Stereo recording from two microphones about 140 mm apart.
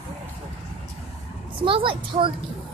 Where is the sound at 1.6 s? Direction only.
40° right (ahead or behind).